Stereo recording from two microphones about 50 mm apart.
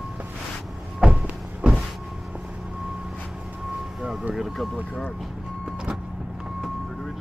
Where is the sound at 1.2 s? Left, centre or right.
Right.